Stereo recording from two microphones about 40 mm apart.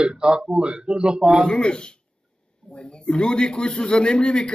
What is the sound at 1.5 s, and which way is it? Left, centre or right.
A man's voice, centre.